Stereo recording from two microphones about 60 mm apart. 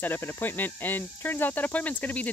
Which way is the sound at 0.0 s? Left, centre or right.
Left.